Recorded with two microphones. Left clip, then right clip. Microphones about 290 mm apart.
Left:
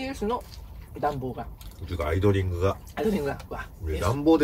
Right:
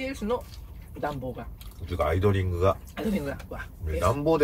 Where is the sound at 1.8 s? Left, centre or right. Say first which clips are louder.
Even; centre.